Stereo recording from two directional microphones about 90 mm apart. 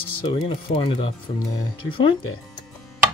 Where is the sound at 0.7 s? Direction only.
90° left.